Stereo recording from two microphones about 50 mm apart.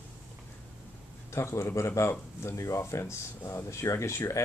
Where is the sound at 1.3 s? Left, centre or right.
Left.